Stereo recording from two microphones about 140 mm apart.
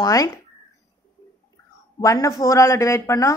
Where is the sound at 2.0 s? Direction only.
25° left (ahead or behind).